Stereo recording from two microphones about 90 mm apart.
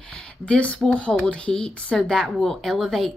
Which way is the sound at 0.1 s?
10° left (ahead or behind).